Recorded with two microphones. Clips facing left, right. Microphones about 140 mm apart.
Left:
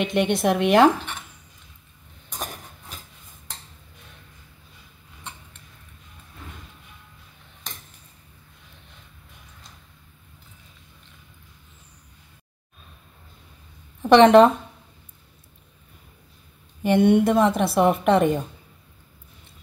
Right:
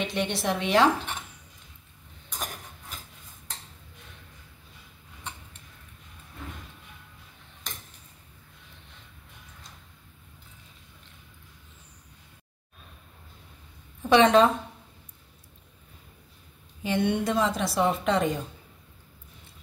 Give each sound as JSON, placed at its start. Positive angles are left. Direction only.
{"t": 0.0, "sound": "a woman's voice", "side_deg": 55}
{"t": 14.0, "sound": "a woman's voice", "side_deg": 65}
{"t": 16.8, "sound": "a woman's voice", "side_deg": 55}